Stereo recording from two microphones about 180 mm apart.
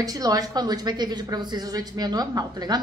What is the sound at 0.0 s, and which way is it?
A woman's voice, 20° right (ahead or behind).